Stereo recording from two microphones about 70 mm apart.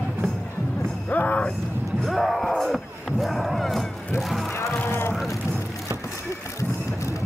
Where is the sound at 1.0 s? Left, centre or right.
Left.